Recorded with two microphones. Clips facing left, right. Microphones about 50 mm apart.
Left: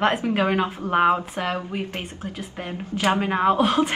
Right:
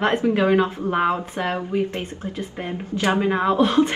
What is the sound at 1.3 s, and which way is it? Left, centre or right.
Speech, right.